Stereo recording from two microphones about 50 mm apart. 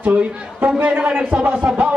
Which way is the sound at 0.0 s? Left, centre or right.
Right.